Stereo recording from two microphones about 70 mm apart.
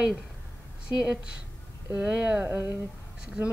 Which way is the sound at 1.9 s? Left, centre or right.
Centre.